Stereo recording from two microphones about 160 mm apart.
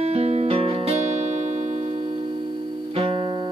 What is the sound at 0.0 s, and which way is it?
Music, 40° right (ahead or behind).